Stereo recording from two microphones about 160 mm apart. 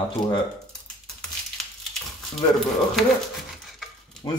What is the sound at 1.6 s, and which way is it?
Crushing, centre (ahead or behind).